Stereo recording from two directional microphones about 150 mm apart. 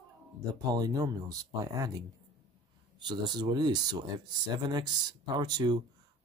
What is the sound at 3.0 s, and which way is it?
Speech, 30° right (ahead or behind).